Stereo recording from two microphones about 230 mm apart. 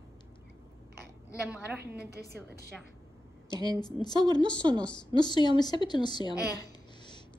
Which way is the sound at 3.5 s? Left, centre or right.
Centre.